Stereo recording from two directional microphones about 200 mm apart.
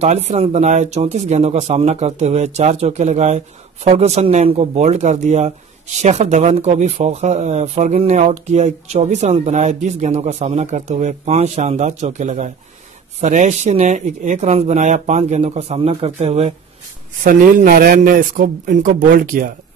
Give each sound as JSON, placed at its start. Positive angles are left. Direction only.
{"t": 0.0, "sound": "speech", "side_deg": -35}
{"t": 17.2, "sound": "speech", "side_deg": -40}